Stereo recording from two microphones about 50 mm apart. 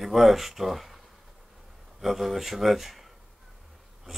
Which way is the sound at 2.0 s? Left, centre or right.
Centre.